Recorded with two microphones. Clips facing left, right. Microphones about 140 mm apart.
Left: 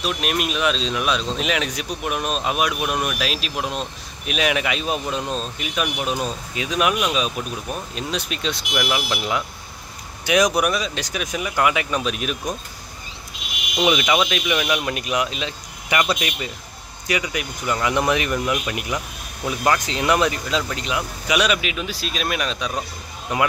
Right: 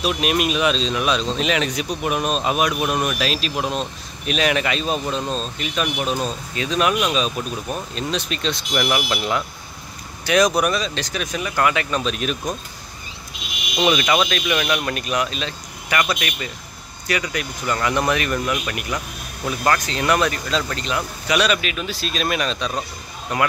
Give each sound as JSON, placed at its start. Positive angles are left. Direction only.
{"t": 0.0, "sound": "speech", "side_deg": -5}
{"t": 13.8, "sound": "speech", "side_deg": 10}
{"t": 23.3, "sound": "speech", "side_deg": 20}